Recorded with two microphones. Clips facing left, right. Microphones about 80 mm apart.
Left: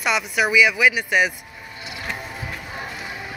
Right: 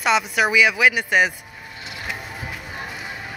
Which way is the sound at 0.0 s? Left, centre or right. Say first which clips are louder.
Right 2 dB; right.